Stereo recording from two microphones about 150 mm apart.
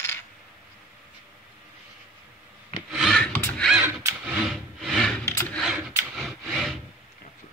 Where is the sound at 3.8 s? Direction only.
20° right (ahead or behind).